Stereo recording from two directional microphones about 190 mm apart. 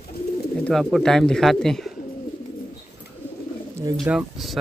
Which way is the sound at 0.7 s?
Centre (ahead or behind).